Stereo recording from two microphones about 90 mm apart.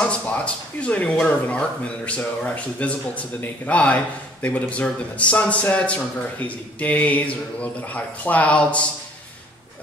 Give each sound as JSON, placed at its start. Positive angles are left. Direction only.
{"t": 0.0, "sound": "speech", "side_deg": 15}